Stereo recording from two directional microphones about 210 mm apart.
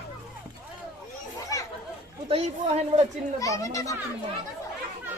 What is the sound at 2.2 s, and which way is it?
Speech, 30° right (ahead or behind).